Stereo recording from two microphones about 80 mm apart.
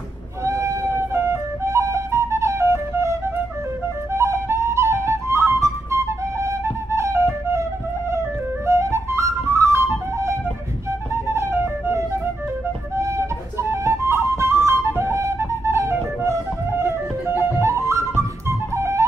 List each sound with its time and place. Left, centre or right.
0.4 s flute: right